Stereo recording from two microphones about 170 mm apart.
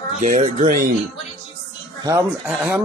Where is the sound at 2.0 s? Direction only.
20° right (ahead or behind).